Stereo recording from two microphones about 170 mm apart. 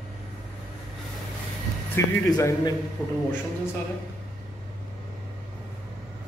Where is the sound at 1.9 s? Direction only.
20° left (ahead or behind).